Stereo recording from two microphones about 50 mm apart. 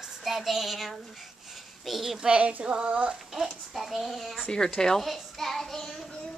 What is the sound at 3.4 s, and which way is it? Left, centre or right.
A child's voice, centre.